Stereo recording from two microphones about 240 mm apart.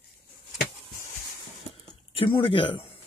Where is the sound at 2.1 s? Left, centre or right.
Left.